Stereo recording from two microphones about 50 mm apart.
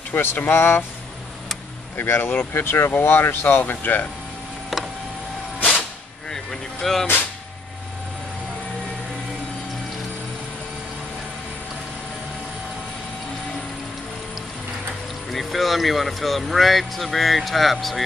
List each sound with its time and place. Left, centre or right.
0.1 s speech: left
2.0 s speech: left
3.8 s speech: left
6.3 s a sound: centre
15.3 s speech: centre